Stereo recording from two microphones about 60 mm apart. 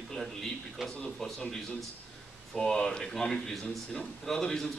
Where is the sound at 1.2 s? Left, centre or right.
Centre.